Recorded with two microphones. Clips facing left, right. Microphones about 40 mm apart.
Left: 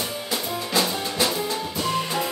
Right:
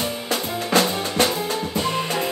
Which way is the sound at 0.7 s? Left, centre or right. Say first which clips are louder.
Right 5 dB; right.